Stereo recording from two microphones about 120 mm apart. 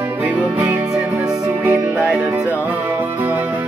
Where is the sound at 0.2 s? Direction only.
20° right (ahead or behind).